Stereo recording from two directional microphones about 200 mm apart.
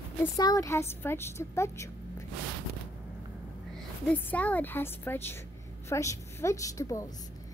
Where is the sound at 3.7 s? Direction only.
5° left (ahead or behind).